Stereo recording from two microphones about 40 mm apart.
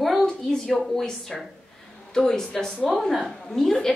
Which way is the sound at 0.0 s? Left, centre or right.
Centre.